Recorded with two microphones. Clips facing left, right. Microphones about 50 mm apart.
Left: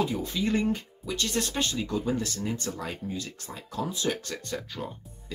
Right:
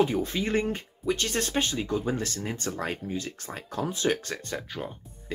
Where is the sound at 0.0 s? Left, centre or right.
Right.